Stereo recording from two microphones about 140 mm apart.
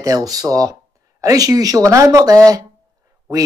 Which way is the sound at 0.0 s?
25° right (ahead or behind).